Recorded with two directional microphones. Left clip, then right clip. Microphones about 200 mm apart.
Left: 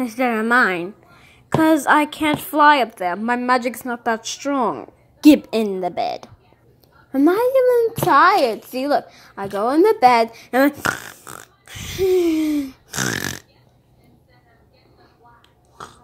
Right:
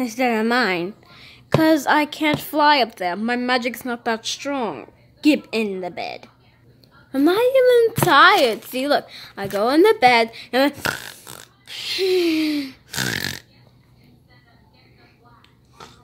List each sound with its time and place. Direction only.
0.0 s speech: 5° right (ahead or behind)
5.2 s a woman's voice: 20° left (ahead or behind)
7.1 s speech: centre (ahead or behind)
10.1 s speech: 5° left (ahead or behind)
15.8 s a sound: 5° left (ahead or behind)